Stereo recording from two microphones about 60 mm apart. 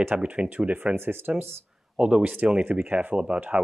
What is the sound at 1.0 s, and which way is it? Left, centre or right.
Speech, right.